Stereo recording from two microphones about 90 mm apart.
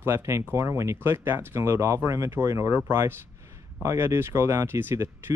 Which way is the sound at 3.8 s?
30° right (ahead or behind).